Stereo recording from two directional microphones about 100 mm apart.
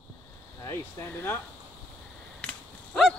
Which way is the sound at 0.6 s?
30° left (ahead or behind).